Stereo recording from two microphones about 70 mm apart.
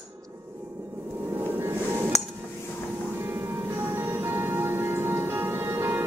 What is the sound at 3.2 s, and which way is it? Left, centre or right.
Music, right.